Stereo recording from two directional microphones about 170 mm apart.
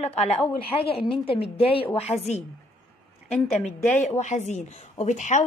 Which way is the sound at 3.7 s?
45° left (ahead or behind).